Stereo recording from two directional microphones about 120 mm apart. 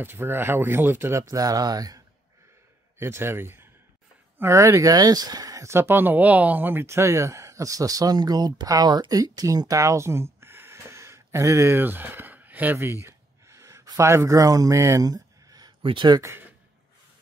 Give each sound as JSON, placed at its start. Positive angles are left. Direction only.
{"t": 0.0, "sound": "speech", "side_deg": -20}
{"t": 1.3, "sound": "speech", "side_deg": -30}
{"t": 3.0, "sound": "a man's voice", "side_deg": -20}
{"t": 15.8, "sound": "speech", "side_deg": -40}
{"t": 16.2, "sound": "a man's voice", "side_deg": -20}